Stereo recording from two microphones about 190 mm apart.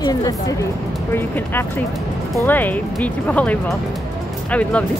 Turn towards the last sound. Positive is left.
turn(degrees=5)  # may be behind; listen again after turning